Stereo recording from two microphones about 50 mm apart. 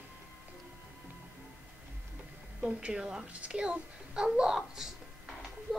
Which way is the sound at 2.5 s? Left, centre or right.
Centre.